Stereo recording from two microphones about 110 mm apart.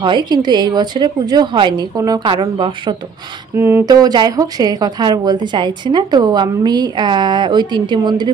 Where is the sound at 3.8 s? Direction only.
35° right (ahead or behind).